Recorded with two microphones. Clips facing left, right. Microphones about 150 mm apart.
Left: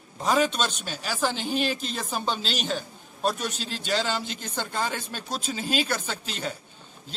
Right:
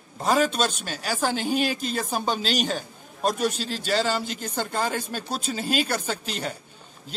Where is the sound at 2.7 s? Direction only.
10° right (ahead or behind).